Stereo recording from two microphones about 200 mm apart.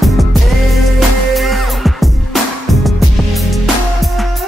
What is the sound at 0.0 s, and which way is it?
Music, centre (ahead or behind).